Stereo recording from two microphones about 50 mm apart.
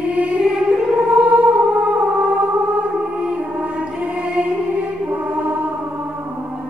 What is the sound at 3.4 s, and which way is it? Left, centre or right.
Music, right.